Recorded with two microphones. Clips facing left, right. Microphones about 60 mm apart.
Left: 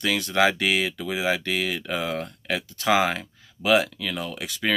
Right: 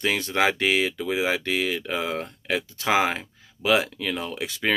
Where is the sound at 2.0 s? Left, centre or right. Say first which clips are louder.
Even; right.